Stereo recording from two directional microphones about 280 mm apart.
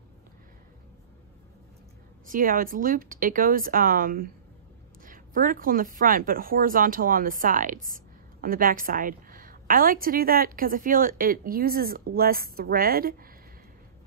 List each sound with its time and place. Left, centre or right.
2.2 s a woman's voice: right